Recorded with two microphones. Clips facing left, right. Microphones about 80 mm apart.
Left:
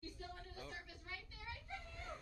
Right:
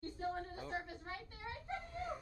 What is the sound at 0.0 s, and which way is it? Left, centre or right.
Children playing, right.